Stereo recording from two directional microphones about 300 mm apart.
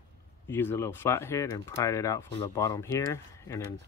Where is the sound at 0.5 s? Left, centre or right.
Centre.